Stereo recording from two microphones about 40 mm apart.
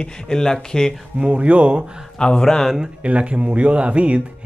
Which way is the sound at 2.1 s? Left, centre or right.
Left.